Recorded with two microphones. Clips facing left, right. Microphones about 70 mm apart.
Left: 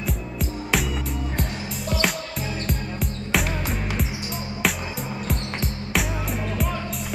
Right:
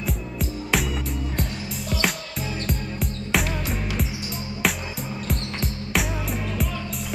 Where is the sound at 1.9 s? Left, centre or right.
Centre.